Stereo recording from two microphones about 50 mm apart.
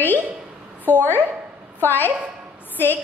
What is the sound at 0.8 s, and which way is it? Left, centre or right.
A woman's voice, left.